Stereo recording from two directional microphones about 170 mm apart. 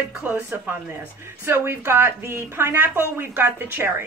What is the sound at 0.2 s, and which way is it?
A woman's voice, 10° right (ahead or behind).